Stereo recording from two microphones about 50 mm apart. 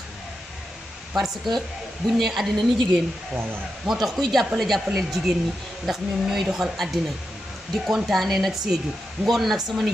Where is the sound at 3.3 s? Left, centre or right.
Right.